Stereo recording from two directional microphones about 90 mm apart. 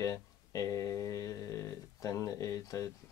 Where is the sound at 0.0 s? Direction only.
40° left (ahead or behind).